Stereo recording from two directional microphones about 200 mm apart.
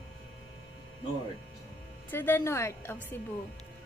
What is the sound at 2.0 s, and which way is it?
Speech, 10° left (ahead or behind).